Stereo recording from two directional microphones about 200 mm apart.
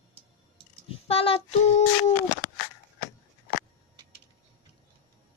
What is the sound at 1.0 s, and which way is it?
Child singing, 30° left (ahead or behind).